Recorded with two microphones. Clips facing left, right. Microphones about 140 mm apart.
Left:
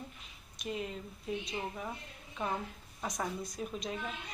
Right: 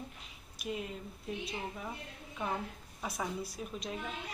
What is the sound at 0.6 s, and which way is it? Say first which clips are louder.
A woman's voice: left 1 dB; centre (ahead or behind).